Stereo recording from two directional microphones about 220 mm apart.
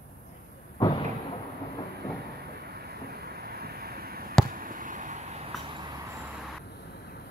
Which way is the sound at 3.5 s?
45° right (ahead or behind).